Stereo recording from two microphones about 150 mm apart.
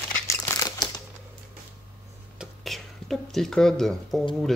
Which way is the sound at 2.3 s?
Centre (ahead or behind).